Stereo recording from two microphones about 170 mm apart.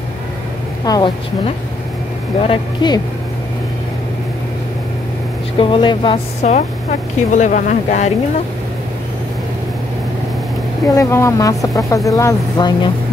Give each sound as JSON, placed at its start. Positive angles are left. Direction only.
{"t": 0.8, "sound": "speech", "side_deg": 20}
{"t": 2.4, "sound": "speech", "side_deg": 30}
{"t": 5.6, "sound": "speech", "side_deg": 30}
{"t": 6.4, "sound": "speech", "side_deg": 45}
{"t": 10.9, "sound": "speech", "side_deg": 20}